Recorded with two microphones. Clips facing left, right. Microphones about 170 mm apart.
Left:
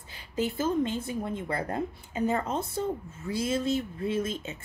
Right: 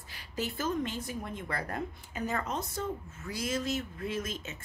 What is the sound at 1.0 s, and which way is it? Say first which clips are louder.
A woman's voice: left 6 dB; 25° left (ahead or behind).